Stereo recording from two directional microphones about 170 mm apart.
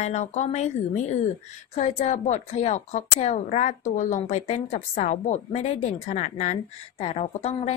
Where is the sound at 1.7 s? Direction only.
40° left (ahead or behind).